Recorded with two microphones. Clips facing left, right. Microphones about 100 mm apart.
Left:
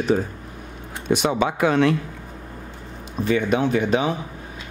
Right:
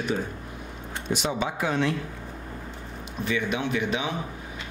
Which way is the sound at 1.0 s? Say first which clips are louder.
Left 7 dB; 60° left (ahead or behind).